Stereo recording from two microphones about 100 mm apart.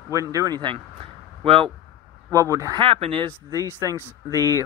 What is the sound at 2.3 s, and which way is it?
Speech, 35° right (ahead or behind).